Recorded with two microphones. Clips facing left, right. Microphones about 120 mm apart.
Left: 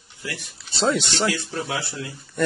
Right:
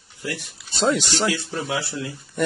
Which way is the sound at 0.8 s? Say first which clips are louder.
Right 1 dB; centre (ahead or behind).